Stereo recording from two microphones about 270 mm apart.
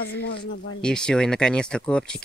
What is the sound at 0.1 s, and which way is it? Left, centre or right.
Speech, left.